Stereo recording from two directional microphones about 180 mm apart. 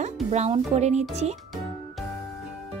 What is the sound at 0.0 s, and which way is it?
Speech, 40° right (ahead or behind).